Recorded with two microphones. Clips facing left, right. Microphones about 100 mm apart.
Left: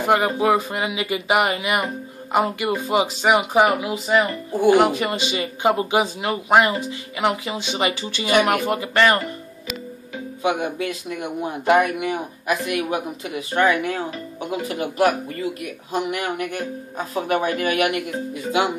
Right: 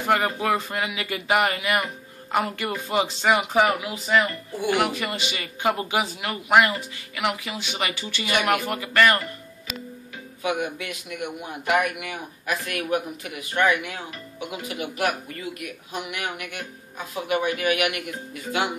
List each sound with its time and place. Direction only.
0.0 s speech: 20° left (ahead or behind)
10.4 s a man's voice: 25° left (ahead or behind)